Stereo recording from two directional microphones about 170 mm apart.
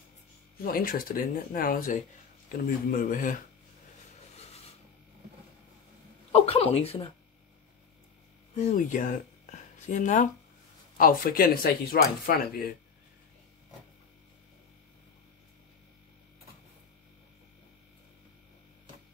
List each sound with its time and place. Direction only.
0.7 s speech: 55° left (ahead or behind)
4.4 s rub: 40° left (ahead or behind)
6.3 s speech: 35° left (ahead or behind)
8.5 s speech: 50° left (ahead or behind)